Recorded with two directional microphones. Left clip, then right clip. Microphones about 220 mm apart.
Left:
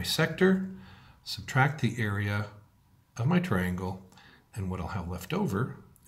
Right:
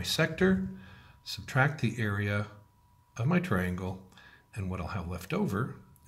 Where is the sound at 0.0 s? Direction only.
Centre (ahead or behind).